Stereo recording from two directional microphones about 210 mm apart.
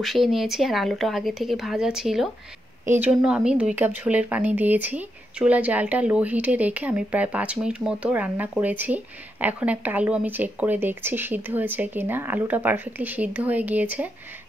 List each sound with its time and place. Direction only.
0.0 s speech: centre (ahead or behind)